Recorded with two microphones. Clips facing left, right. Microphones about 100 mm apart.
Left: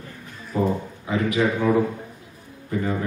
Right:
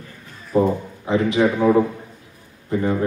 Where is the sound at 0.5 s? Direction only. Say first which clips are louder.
Right 5 dB; 30° right (ahead or behind).